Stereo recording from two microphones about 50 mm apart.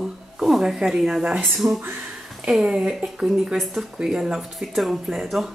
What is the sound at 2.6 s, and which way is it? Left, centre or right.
Speech, centre.